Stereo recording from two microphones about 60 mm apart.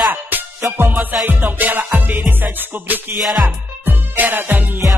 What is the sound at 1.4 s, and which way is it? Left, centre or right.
Music, right.